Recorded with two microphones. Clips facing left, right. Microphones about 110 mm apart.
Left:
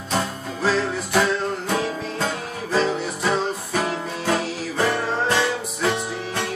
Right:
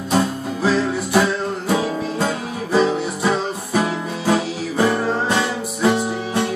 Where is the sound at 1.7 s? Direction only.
10° right (ahead or behind).